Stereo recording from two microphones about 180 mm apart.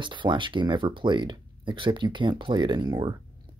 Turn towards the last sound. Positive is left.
turn(degrees=-25)  # may be behind; listen again after turning